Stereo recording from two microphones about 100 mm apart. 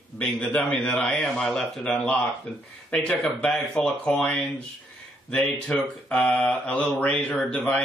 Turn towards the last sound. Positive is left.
turn(degrees=10)  # may be behind; listen again after turning